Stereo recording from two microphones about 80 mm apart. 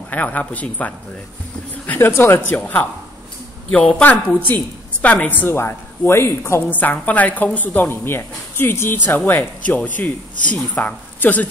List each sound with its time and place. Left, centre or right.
0.1 s a woman's voice: centre
1.9 s a woman's voice: left
5.5 s a man's voice: left
6.7 s a woman's voice: left